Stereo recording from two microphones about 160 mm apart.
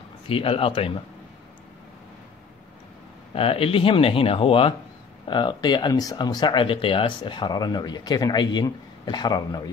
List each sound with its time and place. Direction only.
0.3 s speech: 35° left (ahead or behind)
3.3 s speech: 35° left (ahead or behind)